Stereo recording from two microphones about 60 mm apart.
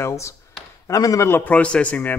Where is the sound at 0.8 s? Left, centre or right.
Left.